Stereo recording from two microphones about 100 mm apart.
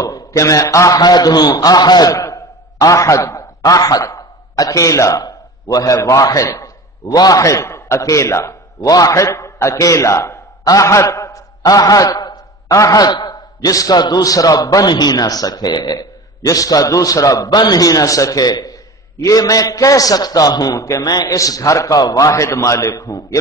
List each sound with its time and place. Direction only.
0.1 s a man's voice: 35° left (ahead or behind)